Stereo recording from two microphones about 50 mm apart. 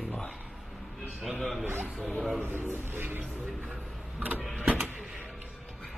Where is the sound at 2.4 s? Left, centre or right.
Right.